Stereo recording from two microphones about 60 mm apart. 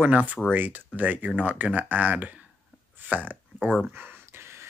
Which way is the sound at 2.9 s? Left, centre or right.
Right.